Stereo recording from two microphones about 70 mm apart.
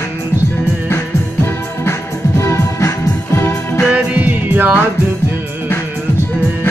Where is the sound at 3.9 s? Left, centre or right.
Right.